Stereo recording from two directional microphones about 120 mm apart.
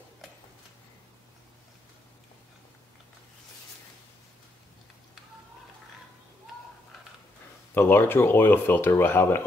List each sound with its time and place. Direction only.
7.7 s speech: 15° left (ahead or behind)